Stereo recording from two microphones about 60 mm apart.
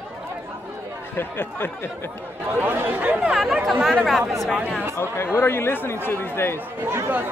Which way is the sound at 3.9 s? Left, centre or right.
Centre.